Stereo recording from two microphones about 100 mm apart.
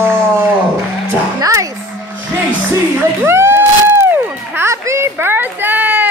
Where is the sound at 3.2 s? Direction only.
25° right (ahead or behind).